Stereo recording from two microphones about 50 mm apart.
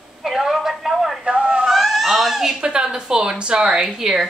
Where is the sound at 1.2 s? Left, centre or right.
Centre.